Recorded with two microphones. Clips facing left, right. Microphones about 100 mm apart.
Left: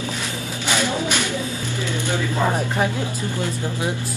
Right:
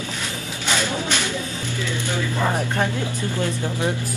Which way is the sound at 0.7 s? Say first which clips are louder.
Left 2 dB; 15° left (ahead or behind).